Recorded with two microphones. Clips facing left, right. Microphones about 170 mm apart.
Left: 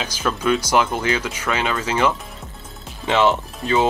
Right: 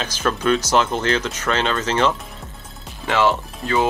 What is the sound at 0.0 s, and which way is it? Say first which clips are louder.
Speech: right 1 dB; 10° left (ahead or behind).